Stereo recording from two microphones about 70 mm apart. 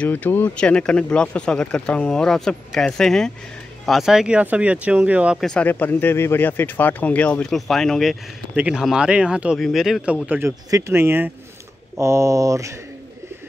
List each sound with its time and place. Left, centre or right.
0.0 s speech: left
0.6 s speech: centre
4.4 s speech: centre
5.6 s speech: left
7.4 s speech: centre
8.5 s speech: centre
9.6 s speech: centre
10.8 s speech: right